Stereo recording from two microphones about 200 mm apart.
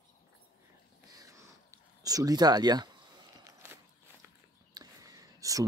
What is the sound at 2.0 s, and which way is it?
Speech, 20° right (ahead or behind).